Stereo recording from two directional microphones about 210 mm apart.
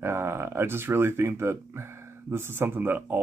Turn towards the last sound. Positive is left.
turn(degrees=-10)  # may be behind; listen again after turning